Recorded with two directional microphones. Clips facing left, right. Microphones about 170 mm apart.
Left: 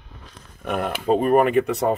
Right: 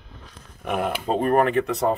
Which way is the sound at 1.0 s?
10° left (ahead or behind).